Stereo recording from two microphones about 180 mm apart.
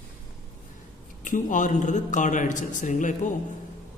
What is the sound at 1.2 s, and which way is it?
A woman's voice, 45° left (ahead or behind).